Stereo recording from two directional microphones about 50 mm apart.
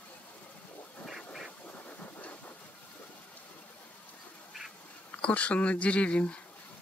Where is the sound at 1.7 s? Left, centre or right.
Left.